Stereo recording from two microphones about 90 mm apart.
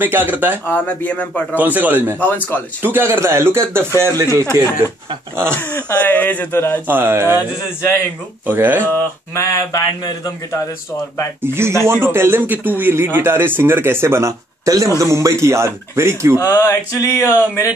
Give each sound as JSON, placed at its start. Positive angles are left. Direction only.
{"t": 0.0, "sound": "a man's voice", "side_deg": -20}
{"t": 0.7, "sound": "speech", "side_deg": 20}
{"t": 1.5, "sound": "a man's voice", "side_deg": -20}
{"t": 2.1, "sound": "speech", "side_deg": 20}
{"t": 2.8, "sound": "a man's voice", "side_deg": -25}
{"t": 5.6, "sound": "speech", "side_deg": 25}
{"t": 6.9, "sound": "a man's voice", "side_deg": -25}
{"t": 8.5, "sound": "a man's voice", "side_deg": -20}
{"t": 8.8, "sound": "speech", "side_deg": 20}
{"t": 9.4, "sound": "a sound", "side_deg": 40}
{"t": 11.4, "sound": "a man's voice", "side_deg": -25}
{"t": 16.3, "sound": "a sound", "side_deg": 30}